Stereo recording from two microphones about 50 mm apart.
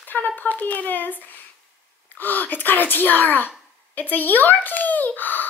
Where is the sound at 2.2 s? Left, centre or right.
Left.